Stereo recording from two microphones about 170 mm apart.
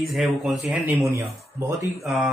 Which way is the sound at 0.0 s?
Centre (ahead or behind).